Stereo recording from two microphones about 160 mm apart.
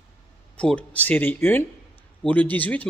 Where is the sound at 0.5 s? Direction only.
10° left (ahead or behind).